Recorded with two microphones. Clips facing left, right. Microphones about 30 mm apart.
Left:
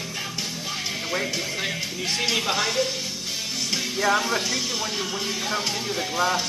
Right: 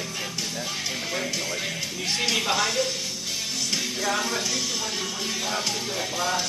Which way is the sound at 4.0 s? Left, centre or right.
Left.